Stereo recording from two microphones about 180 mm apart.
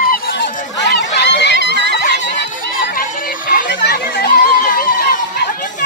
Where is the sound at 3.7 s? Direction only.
70° left (ahead or behind); by 5.2 s 55° left (ahead or behind).